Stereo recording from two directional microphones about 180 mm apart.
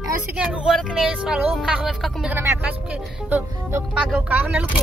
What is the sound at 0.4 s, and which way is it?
Speech, 5° right (ahead or behind).